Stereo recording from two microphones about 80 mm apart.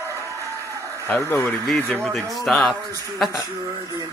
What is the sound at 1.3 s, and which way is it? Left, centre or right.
Speech, left.